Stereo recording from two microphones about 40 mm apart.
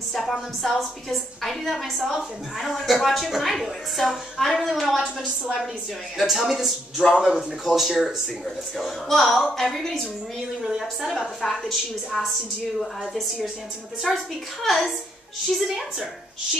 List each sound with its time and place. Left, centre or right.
0.1 s a woman's voice: centre
7.2 s a woman's voice: centre
7.6 s a woman's voice: centre
10.6 s a woman's voice: centre
11.1 s a woman's voice: centre
14.1 s a woman's voice: centre
15.5 s a woman's voice: centre